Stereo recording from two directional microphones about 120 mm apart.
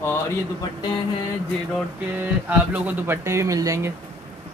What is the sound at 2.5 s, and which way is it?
Speech, 15° right (ahead or behind).